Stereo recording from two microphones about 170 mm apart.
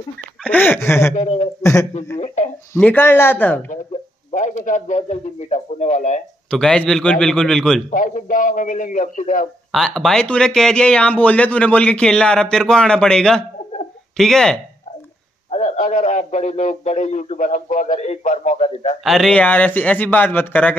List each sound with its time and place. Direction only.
0.4 s speech: 10° left (ahead or behind)
1.1 s a man's voice: 40° left (ahead or behind)
1.6 s speech: 20° left (ahead or behind)
2.1 s a man's voice: 45° left (ahead or behind)
2.7 s speech: 10° left (ahead or behind)
4.3 s a man's voice: 45° left (ahead or behind)
6.5 s speech: 5° left (ahead or behind)
7.9 s a man's voice: 50° left (ahead or behind)
9.7 s speech: centre (ahead or behind)
15.5 s a man's voice: 45° left (ahead or behind)
19.0 s speech: centre (ahead or behind)